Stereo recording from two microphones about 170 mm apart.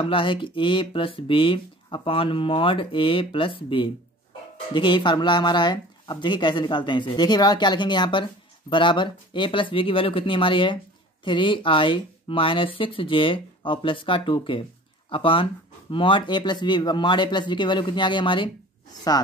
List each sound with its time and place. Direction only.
0.0 s speech: 30° left (ahead or behind)